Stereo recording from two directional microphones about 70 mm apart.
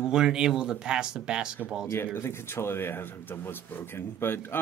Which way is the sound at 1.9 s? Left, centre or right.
Left.